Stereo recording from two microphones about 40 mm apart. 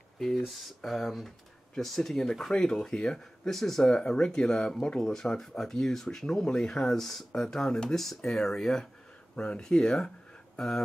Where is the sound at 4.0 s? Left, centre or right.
Left.